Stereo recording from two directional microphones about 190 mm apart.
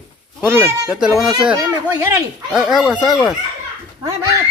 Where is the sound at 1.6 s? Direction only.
15° right (ahead or behind).